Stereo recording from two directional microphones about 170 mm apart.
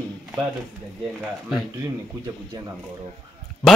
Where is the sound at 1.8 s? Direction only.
20° right (ahead or behind).